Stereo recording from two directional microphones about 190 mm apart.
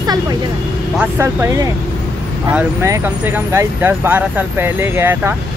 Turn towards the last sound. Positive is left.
turn(degrees=-10)  # may be behind; listen again after turning